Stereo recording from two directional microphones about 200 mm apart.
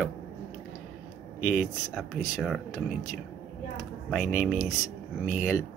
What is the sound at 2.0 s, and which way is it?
Speech, centre (ahead or behind).